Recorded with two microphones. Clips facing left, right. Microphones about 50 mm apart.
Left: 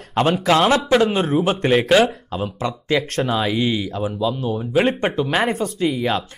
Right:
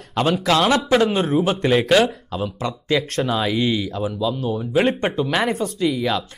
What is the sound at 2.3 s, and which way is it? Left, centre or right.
Speech, left.